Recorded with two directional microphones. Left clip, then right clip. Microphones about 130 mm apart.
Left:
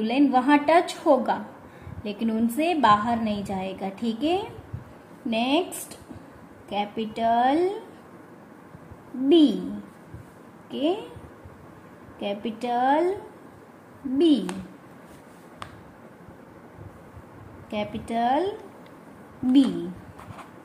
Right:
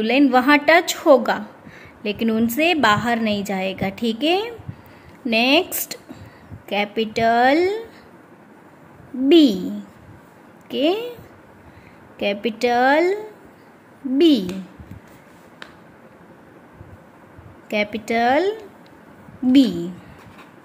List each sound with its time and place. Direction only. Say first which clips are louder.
0.0 s a woman's voice: right 6 dB; 60° right (ahead or behind)
9.3 s speech: right 5 dB; 60° right (ahead or behind)
10.7 s a woman's voice: right 6 dB; 55° right (ahead or behind)
12.2 s speech: right 9 dB; 55° right (ahead or behind)
14.1 s a woman's voice: right 5 dB; 50° right (ahead or behind)
17.6 s speech: right 9 dB; 65° right (ahead or behind)